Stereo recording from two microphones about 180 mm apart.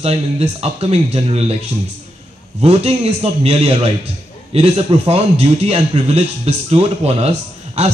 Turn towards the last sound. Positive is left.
turn(degrees=-35)  # may be behind; listen again after turning